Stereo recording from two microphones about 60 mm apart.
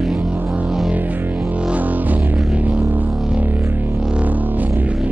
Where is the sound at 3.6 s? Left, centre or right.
Right.